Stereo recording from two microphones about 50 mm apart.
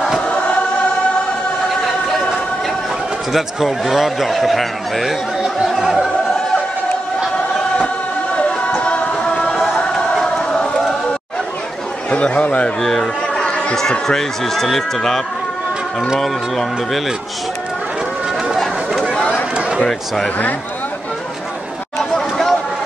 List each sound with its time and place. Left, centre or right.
1.8 s a sound: centre
3.3 s speech: centre
5.4 s chatter: centre
8.4 s music: left
12.1 s speech: left
13.0 s chatter: centre
13.7 s speech: centre
18.5 s chatter: centre
19.1 s run: left
22.1 s chatter: centre